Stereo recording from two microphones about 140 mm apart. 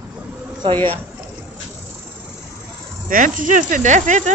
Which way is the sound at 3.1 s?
70° right (ahead or behind).